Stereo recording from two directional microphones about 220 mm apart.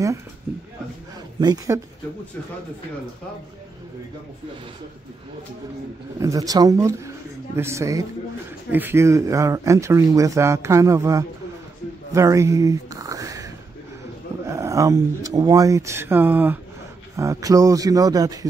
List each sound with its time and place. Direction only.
1.4 s speech: 20° right (ahead or behind)
6.1 s speech: 15° right (ahead or behind)